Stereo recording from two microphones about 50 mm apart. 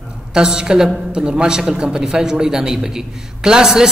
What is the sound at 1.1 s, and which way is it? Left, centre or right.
A man's voice, centre.